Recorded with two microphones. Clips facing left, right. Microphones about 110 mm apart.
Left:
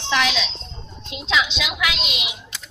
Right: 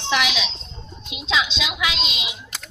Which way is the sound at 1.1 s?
20° right (ahead or behind).